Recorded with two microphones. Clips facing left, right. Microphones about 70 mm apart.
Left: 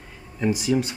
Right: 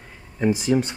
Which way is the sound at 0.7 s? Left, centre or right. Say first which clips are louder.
Right 1 dB; centre.